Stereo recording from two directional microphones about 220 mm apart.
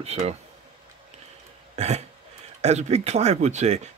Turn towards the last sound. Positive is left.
turn(degrees=-30)  # may be behind; listen again after turning